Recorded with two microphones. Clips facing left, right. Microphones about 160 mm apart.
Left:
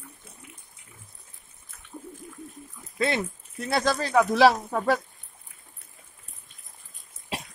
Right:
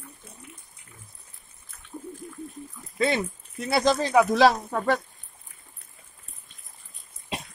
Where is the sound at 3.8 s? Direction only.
20° right (ahead or behind).